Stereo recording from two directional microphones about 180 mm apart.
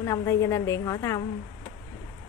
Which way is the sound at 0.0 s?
15° left (ahead or behind).